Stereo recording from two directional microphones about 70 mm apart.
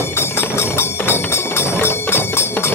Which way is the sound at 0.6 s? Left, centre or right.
Left.